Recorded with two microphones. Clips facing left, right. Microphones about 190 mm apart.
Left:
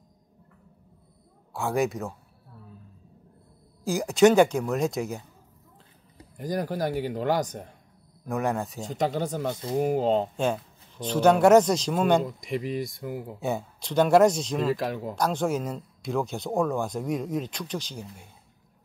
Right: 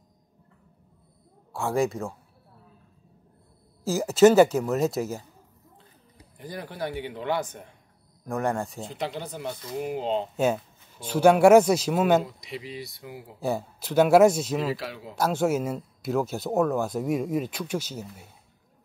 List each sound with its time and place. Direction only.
1.5 s speech: centre (ahead or behind)
3.8 s speech: centre (ahead or behind)
6.3 s a man's voice: 40° left (ahead or behind)
8.3 s speech: centre (ahead or behind)
8.8 s speech: 45° left (ahead or behind)
10.3 s speech: 5° right (ahead or behind)
12.3 s speech: 50° left (ahead or behind)
13.4 s speech: centre (ahead or behind)
14.8 s speech: 45° left (ahead or behind)
15.1 s speech: 5° right (ahead or behind)